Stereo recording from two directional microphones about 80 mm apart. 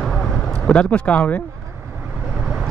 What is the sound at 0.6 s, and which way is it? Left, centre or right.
Speech, centre.